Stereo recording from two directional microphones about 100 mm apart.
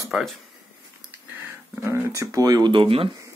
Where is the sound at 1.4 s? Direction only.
25° right (ahead or behind); by 3.1 s 60° right (ahead or behind).